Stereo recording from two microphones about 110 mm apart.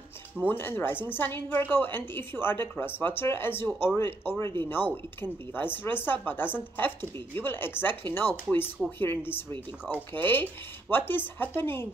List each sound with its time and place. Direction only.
0.5 s speech: 20° left (ahead or behind)